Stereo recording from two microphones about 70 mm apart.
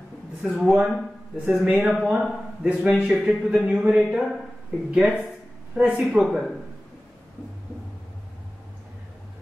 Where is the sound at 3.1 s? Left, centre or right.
Centre.